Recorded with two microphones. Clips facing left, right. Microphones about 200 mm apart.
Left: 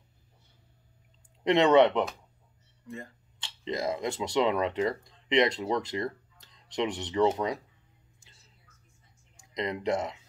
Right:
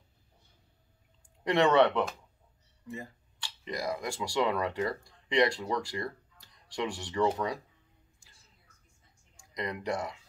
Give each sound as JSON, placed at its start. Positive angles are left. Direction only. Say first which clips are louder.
{"t": 1.4, "sound": "speech", "louder": "left 3 dB", "side_deg": 20}
{"t": 3.3, "sound": "speech", "louder": "left 4 dB", "side_deg": 25}
{"t": 9.4, "sound": "speech", "louder": "left 4 dB", "side_deg": 20}